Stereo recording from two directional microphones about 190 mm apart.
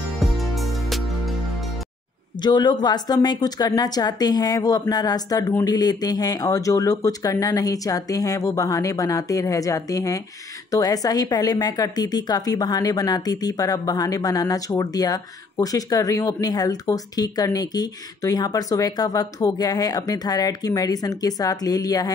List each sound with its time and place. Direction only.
0.2 s music: centre (ahead or behind)
2.4 s a woman's voice: 20° left (ahead or behind)